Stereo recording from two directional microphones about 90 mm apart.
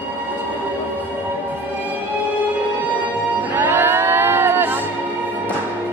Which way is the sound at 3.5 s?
25° right (ahead or behind).